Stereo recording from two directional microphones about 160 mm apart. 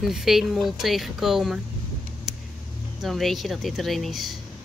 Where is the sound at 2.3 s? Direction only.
Centre (ahead or behind).